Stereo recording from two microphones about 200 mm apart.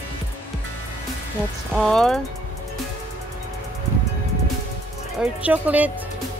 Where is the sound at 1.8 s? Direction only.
Centre (ahead or behind).